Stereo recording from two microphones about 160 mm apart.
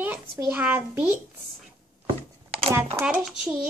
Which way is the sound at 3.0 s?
15° right (ahead or behind).